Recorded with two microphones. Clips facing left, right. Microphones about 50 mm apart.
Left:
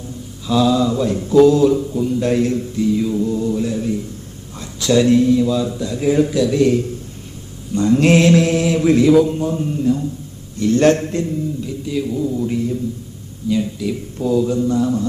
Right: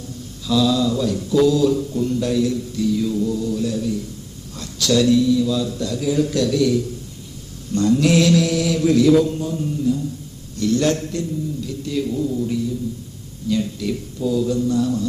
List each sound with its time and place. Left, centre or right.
0.5 s mantra: left
1.8 s a man's voice: centre
2.2 s mantra: left
4.6 s a man's voice: left
6.0 s mantra: left
7.9 s mantra: left
11.6 s speech: centre
12.4 s mantra: left
13.5 s speech: centre
14.3 s a man's voice: left